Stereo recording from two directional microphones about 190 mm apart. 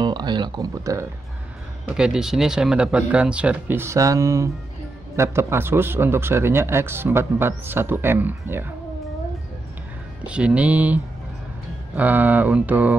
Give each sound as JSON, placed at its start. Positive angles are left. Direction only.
{"t": 0.0, "sound": "speech", "side_deg": -20}
{"t": 1.9, "sound": "speech", "side_deg": -5}
{"t": 10.2, "sound": "speech", "side_deg": -5}